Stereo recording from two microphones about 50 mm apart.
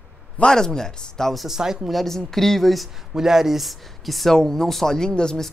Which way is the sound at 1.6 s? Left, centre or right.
Centre.